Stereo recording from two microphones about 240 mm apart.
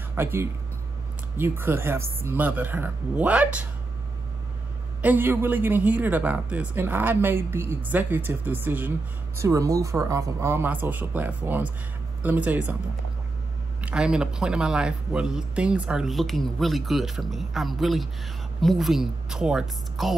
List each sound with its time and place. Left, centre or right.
0.1 s a man's voice: centre
5.0 s a man's voice: centre
13.7 s speech: centre